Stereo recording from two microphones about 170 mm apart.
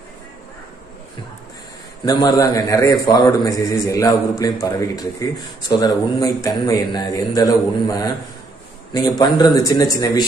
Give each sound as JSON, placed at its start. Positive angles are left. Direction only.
{"t": 2.0, "sound": "a man's voice", "side_deg": 20}